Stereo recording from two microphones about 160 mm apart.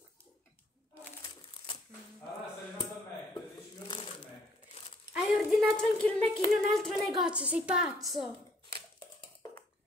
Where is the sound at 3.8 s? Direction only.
30° left (ahead or behind).